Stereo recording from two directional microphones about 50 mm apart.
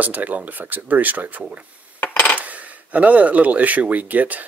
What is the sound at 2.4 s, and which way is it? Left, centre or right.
Speech, right.